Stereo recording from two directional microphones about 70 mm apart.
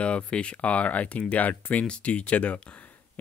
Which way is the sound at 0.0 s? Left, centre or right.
Centre.